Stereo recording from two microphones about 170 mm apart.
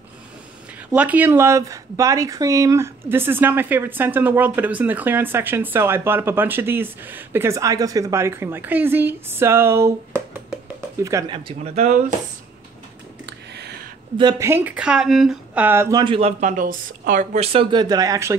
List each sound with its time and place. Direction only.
0.9 s speech: 10° right (ahead or behind)
11.3 s speech: 35° right (ahead or behind)
13.2 s a sound: 75° right (ahead or behind)
14.1 s speech: 25° right (ahead or behind)
14.5 s speech: 10° right (ahead or behind)
16.0 s speech: 35° right (ahead or behind)